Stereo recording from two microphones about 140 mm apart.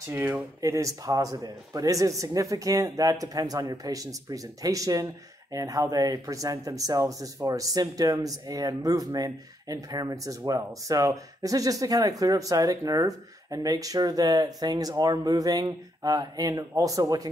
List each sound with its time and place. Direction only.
0.1 s speech: 15° right (ahead or behind)